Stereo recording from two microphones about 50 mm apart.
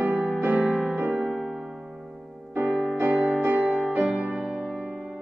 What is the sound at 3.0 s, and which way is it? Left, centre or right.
Music, right.